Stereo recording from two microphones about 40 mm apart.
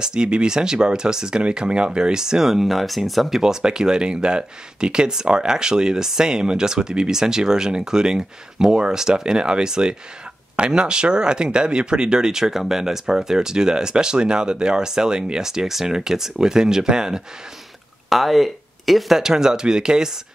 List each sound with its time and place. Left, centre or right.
0.0 s speech: right
3.6 s speech: centre
18.1 s speech: centre